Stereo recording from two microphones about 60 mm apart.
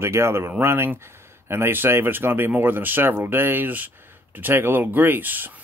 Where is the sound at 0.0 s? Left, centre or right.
Right.